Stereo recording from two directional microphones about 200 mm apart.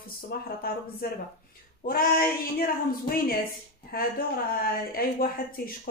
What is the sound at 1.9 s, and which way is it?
Speech, 45° left (ahead or behind).